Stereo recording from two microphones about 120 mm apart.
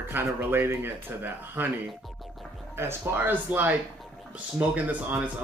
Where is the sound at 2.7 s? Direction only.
20° right (ahead or behind).